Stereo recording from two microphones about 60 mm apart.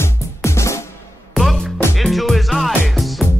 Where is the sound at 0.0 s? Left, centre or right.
Left.